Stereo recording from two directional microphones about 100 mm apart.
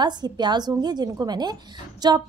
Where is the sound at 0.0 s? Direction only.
45° right (ahead or behind).